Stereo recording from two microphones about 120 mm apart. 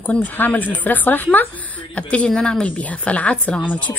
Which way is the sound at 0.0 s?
15° left (ahead or behind).